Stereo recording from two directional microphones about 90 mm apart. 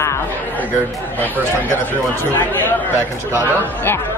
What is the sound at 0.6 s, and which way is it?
A woman's voice, 20° left (ahead or behind).